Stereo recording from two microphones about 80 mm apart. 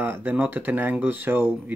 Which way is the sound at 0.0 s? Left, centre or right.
Right.